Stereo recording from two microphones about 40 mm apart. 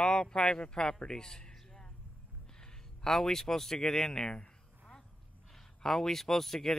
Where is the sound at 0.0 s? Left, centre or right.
Left.